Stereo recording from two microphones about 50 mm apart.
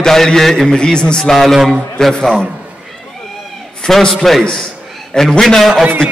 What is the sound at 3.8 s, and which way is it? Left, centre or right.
A man's voice, centre.